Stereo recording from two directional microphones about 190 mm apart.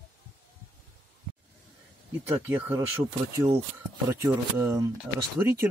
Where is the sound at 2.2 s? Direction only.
10° right (ahead or behind).